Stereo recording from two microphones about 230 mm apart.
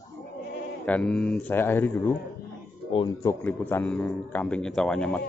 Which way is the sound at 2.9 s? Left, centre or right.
Centre.